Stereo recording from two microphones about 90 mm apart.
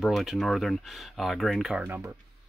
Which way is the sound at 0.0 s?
Centre (ahead or behind).